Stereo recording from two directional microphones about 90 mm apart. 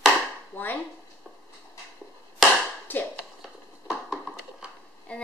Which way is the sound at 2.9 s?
20° left (ahead or behind).